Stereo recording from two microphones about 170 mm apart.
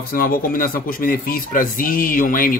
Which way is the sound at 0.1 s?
55° left (ahead or behind).